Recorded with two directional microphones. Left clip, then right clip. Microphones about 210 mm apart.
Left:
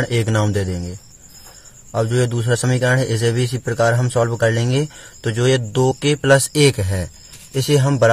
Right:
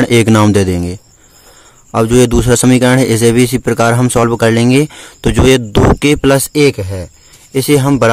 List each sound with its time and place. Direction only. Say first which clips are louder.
0.0 s speech: right 11 dB; 45° right (ahead or behind); by 7.1 s 25° right (ahead or behind)
7.5 s speech: right 7 dB; 40° right (ahead or behind)